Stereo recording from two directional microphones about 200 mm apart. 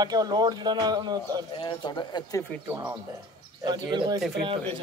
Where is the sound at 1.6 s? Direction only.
25° left (ahead or behind).